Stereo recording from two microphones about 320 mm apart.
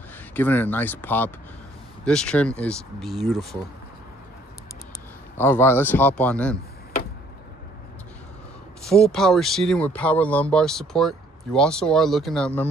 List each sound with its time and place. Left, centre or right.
0.3 s speech: centre
5.4 s speech: centre
8.8 s speech: centre